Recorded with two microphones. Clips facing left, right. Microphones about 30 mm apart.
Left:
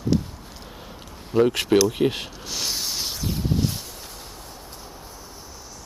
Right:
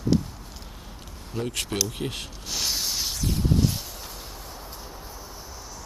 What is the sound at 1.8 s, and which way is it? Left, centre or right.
Speech, centre.